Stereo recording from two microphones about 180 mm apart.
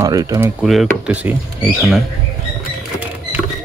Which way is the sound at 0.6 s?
5° right (ahead or behind).